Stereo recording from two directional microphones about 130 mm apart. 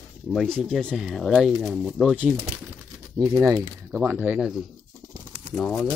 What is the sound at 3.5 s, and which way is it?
Speech, 20° right (ahead or behind).